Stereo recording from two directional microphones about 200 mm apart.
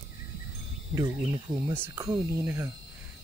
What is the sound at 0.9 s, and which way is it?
Speech, 15° right (ahead or behind).